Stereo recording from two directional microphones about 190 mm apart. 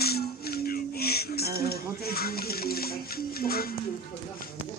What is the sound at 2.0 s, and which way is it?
Music, 55° left (ahead or behind).